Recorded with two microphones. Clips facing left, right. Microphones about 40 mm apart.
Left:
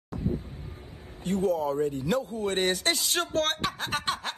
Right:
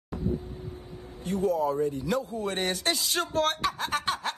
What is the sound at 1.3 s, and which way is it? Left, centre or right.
Speech, left.